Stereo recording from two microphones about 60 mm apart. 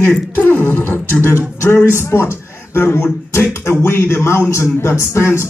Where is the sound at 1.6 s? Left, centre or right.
Left.